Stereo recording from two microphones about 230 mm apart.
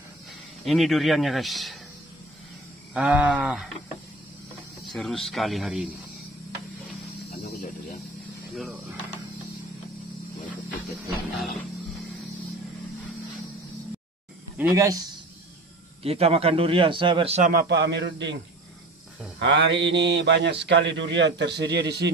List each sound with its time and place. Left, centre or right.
0.7 s speech: centre
2.9 s speech: centre
4.9 s speech: centre
7.2 s snake: left
8.5 s speech: centre
14.6 s speech: centre
16.0 s a man's voice: right
17.5 s speech: right
19.3 s speech: right